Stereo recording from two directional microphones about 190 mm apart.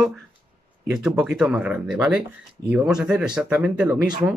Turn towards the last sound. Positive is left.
turn(degrees=-20)  # may be behind; listen again after turning